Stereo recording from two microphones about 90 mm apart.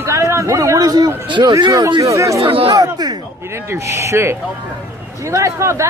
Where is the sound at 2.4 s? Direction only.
90° right.